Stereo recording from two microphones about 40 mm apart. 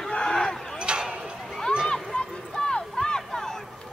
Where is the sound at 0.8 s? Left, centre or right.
Right.